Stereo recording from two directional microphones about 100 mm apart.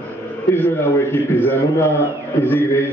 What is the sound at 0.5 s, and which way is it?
A man's voice, 25° left (ahead or behind).